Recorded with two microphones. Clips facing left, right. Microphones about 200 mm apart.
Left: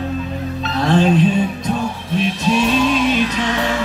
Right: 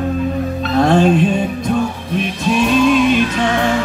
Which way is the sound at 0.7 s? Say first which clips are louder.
Right 3 dB; 50° right (ahead or behind).